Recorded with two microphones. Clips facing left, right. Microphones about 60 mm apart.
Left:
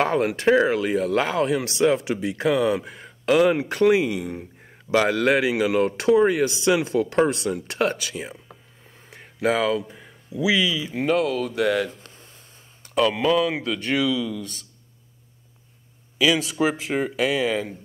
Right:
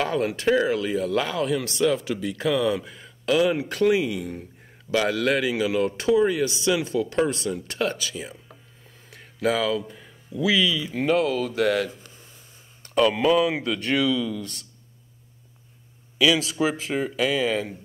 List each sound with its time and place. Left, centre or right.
0.0 s speech: left
3.9 s speech: left
4.9 s speech: left
7.5 s speech: left
9.1 s a sound: left
9.8 s speech: centre
12.0 s a sound: left
12.8 s speech: centre
16.2 s speech: centre
16.9 s speech: left
17.3 s speech: centre